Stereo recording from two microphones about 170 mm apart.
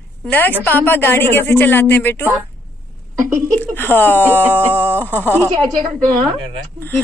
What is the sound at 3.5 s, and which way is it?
Speech, 10° left (ahead or behind).